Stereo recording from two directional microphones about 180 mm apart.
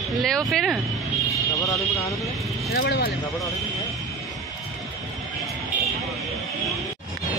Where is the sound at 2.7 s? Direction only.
65° left (ahead or behind).